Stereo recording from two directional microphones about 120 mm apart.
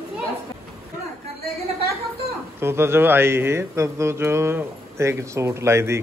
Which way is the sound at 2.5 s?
20° right (ahead or behind).